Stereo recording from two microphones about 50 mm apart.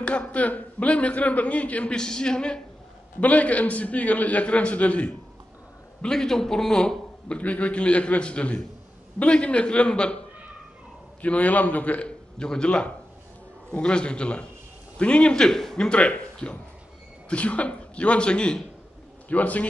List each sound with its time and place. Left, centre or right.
0.0 s speech: left
2.0 s a man's voice: centre
3.2 s speech: left
6.0 s a man's voice: centre
7.3 s a man's voice: left
12.4 s a man's voice: centre
15.9 s speech: left
19.2 s a man's voice: left